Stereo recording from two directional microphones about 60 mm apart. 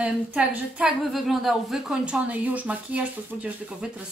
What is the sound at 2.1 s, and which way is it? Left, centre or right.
A woman's voice, right.